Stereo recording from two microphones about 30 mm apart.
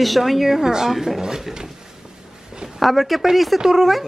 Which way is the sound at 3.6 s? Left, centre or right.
Centre.